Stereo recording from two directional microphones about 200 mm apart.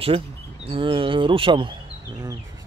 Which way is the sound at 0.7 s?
25° right (ahead or behind).